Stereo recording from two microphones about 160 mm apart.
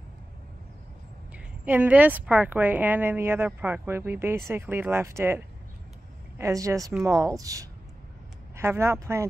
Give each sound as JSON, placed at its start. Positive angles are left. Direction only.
{"t": 1.3, "sound": "speech", "side_deg": -10}